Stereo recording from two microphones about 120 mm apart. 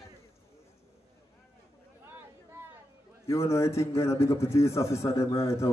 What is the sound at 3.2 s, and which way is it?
A man's voice, 25° left (ahead or behind).